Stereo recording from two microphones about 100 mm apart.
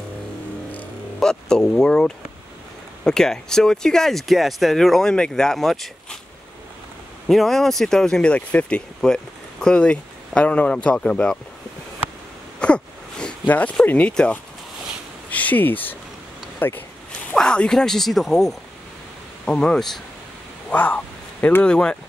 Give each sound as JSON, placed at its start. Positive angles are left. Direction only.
{"t": 0.7, "sound": "a sound", "side_deg": 10}
{"t": 3.0, "sound": "speech", "side_deg": 5}
{"t": 7.2, "sound": "speech", "side_deg": 0}
{"t": 12.5, "sound": "a sound", "side_deg": 10}
{"t": 15.2, "sound": "speech", "side_deg": 15}
{"t": 17.3, "sound": "speech", "side_deg": 10}